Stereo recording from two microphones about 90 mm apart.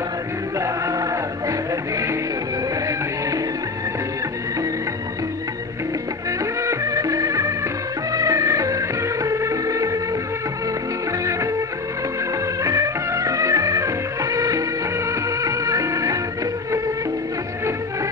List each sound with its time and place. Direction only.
0.6 s music: 35° right (ahead or behind)
6.6 s music: 35° right (ahead or behind)
12.6 s music: 35° right (ahead or behind)